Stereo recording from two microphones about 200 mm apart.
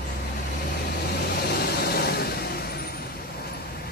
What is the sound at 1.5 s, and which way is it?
Vehicle, 50° left (ahead or behind).